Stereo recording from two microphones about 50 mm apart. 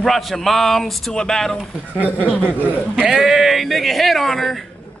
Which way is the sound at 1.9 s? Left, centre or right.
Right.